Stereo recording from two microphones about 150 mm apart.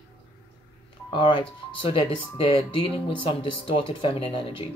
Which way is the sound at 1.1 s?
30° left (ahead or behind).